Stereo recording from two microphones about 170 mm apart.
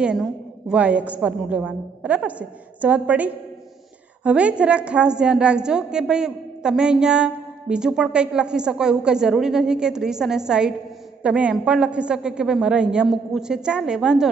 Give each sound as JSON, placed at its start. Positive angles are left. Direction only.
{"t": 0.0, "sound": "a woman's voice", "side_deg": -5}